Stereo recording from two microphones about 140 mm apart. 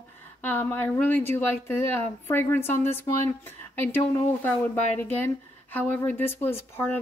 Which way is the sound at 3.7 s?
15° left (ahead or behind).